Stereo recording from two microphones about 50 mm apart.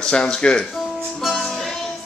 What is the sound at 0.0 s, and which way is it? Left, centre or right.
Speech, centre.